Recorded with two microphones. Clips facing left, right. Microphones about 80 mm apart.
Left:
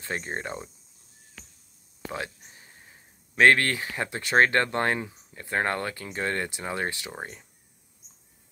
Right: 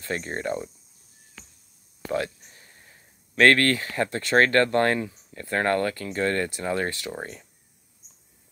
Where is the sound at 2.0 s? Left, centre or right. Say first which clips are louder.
Right 7 dB; centre.